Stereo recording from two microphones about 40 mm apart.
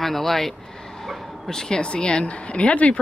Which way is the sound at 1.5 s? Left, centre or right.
Centre.